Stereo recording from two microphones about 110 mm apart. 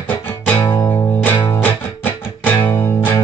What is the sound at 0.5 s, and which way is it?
Music, 45° left (ahead or behind).